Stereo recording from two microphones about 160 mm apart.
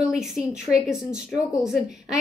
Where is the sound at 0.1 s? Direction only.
5° right (ahead or behind).